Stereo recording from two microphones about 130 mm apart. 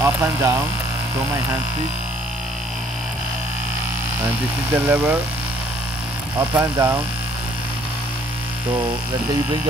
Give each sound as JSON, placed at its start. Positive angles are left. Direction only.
{"t": 0.0, "sound": "speech", "side_deg": -20}
{"t": 4.7, "sound": "speech", "side_deg": -15}
{"t": 6.5, "sound": "speech", "side_deg": -25}